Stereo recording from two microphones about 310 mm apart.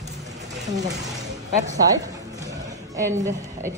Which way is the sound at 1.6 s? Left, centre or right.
Centre.